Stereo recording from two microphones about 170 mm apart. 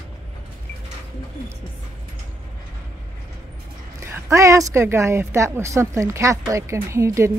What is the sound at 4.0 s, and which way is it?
A woman's voice, 15° right (ahead or behind).